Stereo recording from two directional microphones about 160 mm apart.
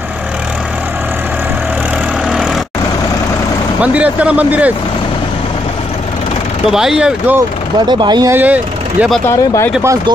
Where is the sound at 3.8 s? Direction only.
10° right (ahead or behind).